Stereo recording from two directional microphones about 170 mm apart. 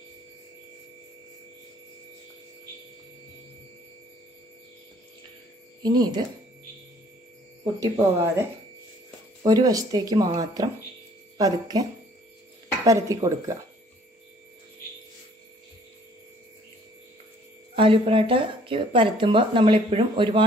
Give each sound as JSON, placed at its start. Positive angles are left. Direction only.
{"t": 5.8, "sound": "speech", "side_deg": -25}
{"t": 7.8, "sound": "speech", "side_deg": -15}
{"t": 17.7, "sound": "speech", "side_deg": -30}